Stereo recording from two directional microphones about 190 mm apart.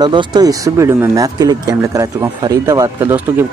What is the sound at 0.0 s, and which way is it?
Speech, 25° right (ahead or behind).